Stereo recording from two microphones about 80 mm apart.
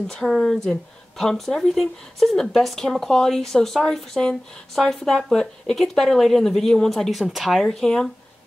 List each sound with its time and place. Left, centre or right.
0.1 s a woman's voice: centre